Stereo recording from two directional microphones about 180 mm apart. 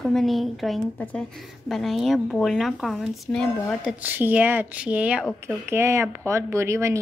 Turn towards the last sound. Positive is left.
turn(degrees=-15)  # may be behind; listen again after turning